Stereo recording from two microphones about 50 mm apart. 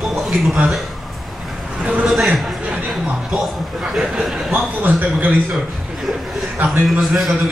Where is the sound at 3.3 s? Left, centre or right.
Centre.